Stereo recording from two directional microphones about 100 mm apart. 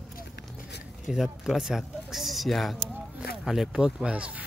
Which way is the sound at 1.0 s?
5° right (ahead or behind).